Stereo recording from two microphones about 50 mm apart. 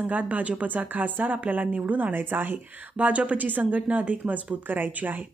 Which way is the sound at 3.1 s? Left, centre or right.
Right.